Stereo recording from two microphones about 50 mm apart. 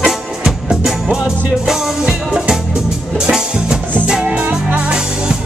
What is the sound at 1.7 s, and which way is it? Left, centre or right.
Music, centre.